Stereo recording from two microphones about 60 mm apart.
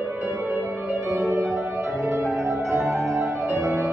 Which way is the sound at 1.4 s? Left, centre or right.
Centre.